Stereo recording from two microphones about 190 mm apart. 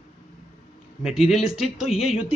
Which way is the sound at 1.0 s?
Centre (ahead or behind).